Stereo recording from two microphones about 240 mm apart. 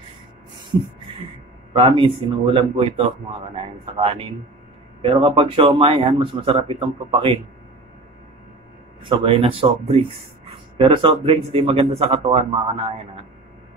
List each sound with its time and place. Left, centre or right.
1.7 s speech: right
9.0 s speech: right